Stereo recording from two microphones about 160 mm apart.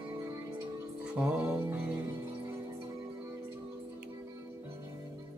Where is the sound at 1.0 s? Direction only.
5° right (ahead or behind).